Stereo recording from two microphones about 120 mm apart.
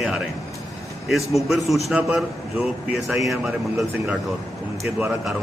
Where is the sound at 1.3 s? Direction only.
Centre (ahead or behind).